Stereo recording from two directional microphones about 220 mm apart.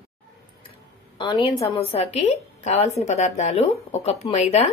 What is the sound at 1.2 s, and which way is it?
A woman's voice, 20° left (ahead or behind).